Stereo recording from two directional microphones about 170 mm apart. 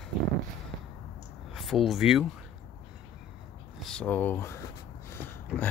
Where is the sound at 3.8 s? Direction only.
5° left (ahead or behind).